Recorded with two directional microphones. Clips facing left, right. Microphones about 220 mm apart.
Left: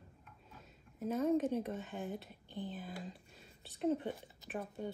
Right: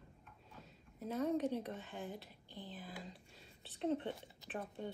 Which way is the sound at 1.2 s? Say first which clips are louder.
Left 4 dB; centre (ahead or behind).